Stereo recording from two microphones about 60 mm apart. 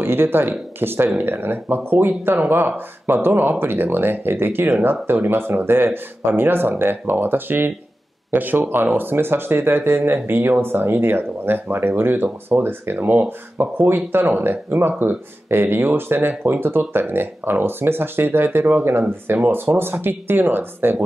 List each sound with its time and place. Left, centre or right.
0.0 s speech: right